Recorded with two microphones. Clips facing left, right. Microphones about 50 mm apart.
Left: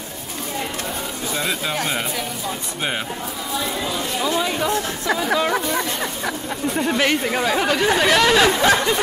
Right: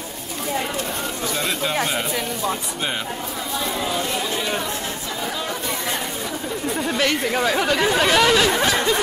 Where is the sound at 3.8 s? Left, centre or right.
Centre.